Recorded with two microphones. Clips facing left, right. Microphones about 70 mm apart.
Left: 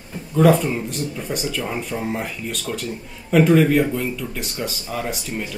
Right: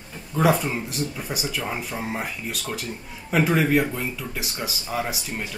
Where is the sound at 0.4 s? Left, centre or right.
Centre.